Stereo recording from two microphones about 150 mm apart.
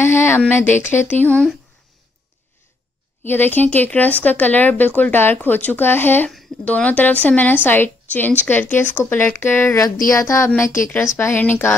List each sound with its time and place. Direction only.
0.0 s a sound: 15° left (ahead or behind)
0.5 s speech: 15° left (ahead or behind)
3.3 s speech: 10° left (ahead or behind)